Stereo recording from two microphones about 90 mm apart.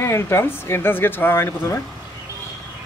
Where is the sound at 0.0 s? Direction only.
30° left (ahead or behind).